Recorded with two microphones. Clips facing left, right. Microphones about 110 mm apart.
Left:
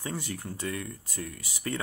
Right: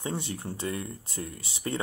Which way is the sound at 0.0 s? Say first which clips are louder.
Right 2 dB; 25° right (ahead or behind).